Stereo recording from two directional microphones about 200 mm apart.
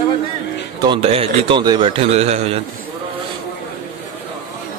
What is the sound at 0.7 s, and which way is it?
A man's voice, 25° right (ahead or behind).